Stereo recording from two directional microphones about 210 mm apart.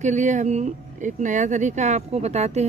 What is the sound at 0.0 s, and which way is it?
Speech, 35° right (ahead or behind).